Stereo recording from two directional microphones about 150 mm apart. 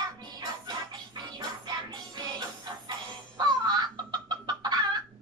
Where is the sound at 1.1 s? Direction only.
30° right (ahead or behind).